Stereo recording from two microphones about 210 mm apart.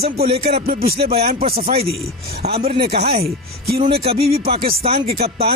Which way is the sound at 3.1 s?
25° right (ahead or behind).